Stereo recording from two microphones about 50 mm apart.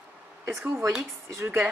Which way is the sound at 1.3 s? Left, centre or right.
Right.